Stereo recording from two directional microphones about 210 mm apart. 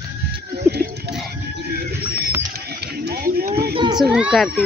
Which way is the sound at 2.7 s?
50° right (ahead or behind).